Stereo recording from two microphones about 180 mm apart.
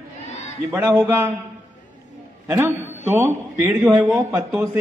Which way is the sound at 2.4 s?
15° right (ahead or behind).